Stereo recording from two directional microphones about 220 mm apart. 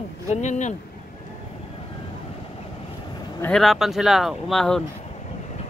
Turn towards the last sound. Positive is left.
turn(degrees=0)  # may be behind; listen again after turning